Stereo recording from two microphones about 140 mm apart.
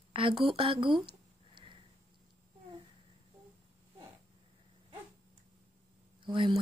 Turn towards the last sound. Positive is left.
turn(degrees=-40)  # may be behind; listen again after turning